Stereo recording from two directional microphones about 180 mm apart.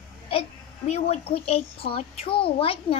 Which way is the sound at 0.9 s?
35° left (ahead or behind).